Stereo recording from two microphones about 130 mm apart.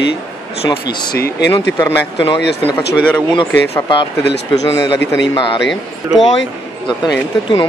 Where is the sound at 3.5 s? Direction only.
20° left (ahead or behind).